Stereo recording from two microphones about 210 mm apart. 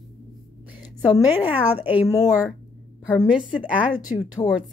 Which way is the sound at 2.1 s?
15° left (ahead or behind).